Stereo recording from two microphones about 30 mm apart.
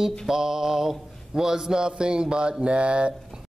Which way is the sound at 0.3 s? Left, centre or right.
Centre.